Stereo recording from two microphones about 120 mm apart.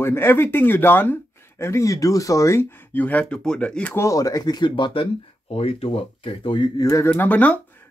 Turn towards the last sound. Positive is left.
turn(degrees=10)  # may be behind; listen again after turning